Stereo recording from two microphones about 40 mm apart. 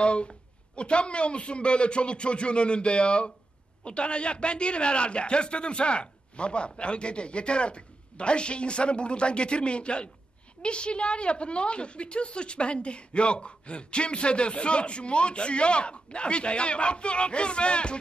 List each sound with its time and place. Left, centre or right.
0.0 s a woman's voice: left